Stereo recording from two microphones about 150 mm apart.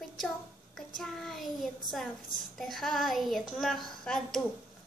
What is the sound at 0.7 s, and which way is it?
A child's voice, centre (ahead or behind).